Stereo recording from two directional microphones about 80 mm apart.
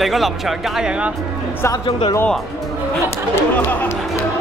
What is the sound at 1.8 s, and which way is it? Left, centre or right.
Speech, left.